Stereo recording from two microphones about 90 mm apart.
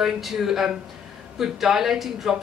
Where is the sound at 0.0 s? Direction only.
5° right (ahead or behind).